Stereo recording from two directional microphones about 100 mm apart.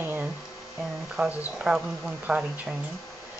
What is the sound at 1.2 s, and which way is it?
A woman's voice, 5° right (ahead or behind).